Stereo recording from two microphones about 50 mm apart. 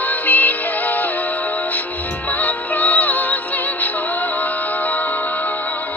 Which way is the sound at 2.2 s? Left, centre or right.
Left.